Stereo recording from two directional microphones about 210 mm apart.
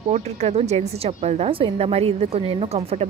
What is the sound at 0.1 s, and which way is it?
Speech, 30° right (ahead or behind).